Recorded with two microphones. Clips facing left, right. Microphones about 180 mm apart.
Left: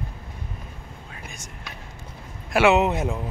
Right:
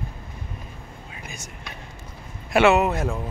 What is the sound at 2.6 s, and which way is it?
Speech, 20° left (ahead or behind).